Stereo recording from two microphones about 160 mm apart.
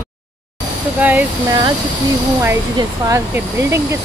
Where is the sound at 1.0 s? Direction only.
10° right (ahead or behind).